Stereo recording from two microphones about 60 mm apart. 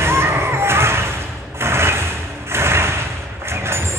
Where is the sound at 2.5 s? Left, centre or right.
Right.